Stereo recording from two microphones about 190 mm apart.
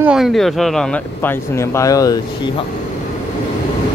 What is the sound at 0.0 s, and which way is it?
Speech, 5° right (ahead or behind).